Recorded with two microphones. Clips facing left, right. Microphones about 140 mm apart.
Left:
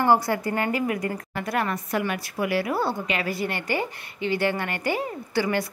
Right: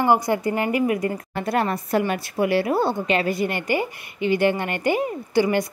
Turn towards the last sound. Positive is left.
turn(degrees=-15)  # may be behind; listen again after turning